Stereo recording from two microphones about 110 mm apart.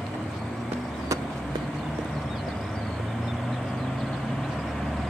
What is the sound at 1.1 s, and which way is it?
Vehicle, 30° right (ahead or behind).